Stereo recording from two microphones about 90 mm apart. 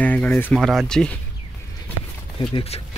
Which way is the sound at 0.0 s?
15° left (ahead or behind).